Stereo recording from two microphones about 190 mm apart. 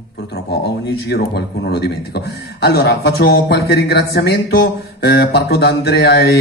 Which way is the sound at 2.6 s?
55° left (ahead or behind).